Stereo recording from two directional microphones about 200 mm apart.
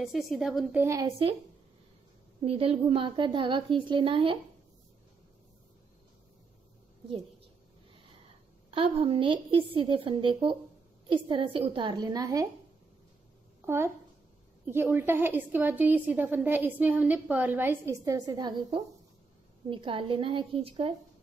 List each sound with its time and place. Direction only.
0.0 s a woman's voice: centre (ahead or behind); by 1.3 s 15° right (ahead or behind)
2.4 s a woman's voice: 30° right (ahead or behind)
8.6 s a woman's voice: 30° right (ahead or behind)
13.7 s a woman's voice: 10° right (ahead or behind)